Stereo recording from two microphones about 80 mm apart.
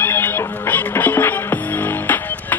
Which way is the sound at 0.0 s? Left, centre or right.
Left.